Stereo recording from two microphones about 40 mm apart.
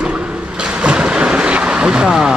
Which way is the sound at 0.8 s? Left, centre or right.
Right.